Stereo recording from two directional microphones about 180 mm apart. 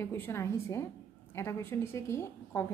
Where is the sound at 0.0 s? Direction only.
10° left (ahead or behind).